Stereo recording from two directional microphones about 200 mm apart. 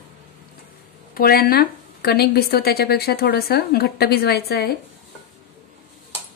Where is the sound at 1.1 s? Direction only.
50° left (ahead or behind).